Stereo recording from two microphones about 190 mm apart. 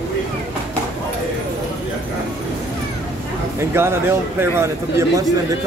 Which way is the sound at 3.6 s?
15° right (ahead or behind).